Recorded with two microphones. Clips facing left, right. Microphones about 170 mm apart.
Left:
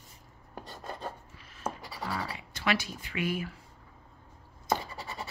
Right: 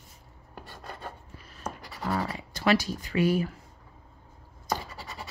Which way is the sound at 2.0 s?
45° right (ahead or behind).